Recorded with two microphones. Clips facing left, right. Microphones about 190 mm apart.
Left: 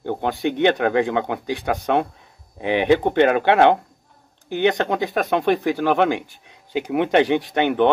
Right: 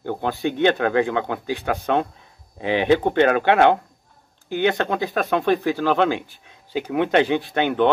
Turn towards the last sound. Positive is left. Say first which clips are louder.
# left 1 dB
turn(degrees=15)  # may be behind; listen again after turning